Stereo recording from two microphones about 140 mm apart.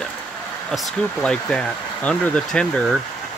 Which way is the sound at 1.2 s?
5° left (ahead or behind).